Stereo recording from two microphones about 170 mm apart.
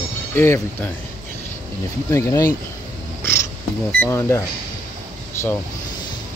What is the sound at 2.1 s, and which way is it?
Speech, 20° left (ahead or behind).